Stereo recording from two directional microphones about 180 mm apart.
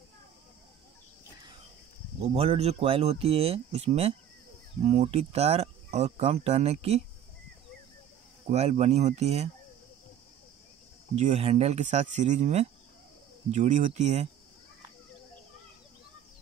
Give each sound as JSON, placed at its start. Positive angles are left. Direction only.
{"t": 2.2, "sound": "speech", "side_deg": -35}
{"t": 8.5, "sound": "speech", "side_deg": -35}
{"t": 11.1, "sound": "speech", "side_deg": -40}